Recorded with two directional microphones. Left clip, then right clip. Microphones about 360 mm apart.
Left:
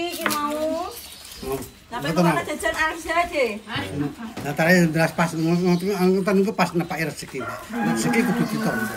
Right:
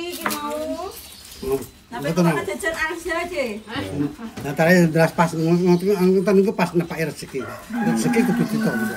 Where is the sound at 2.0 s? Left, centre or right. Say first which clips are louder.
Even; centre.